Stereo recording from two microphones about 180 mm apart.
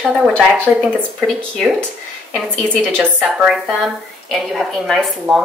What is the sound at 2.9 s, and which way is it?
A woman's voice, 10° right (ahead or behind).